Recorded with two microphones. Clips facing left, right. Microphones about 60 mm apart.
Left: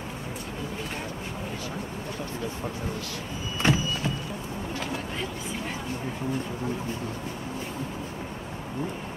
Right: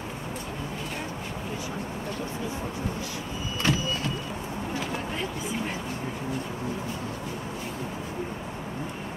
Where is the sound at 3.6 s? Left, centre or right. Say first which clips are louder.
Left 2 dB; left.